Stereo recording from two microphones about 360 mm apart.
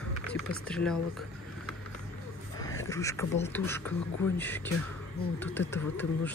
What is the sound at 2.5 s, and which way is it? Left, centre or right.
Speech, centre.